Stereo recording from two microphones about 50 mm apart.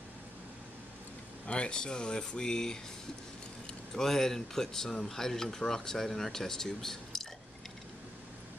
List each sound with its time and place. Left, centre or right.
1.5 s speech: centre
3.9 s speech: centre